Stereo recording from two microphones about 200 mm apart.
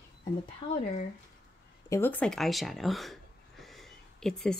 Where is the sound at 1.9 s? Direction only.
10° left (ahead or behind).